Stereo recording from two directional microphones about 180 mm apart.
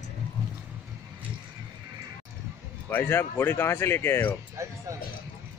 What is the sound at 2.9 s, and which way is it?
Speech, 10° left (ahead or behind).